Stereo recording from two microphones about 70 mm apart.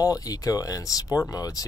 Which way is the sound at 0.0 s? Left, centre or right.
Left.